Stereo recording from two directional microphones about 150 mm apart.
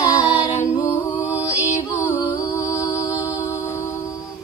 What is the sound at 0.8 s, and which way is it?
Music, 15° left (ahead or behind).